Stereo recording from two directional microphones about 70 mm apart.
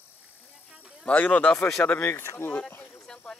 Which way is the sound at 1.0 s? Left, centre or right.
Centre.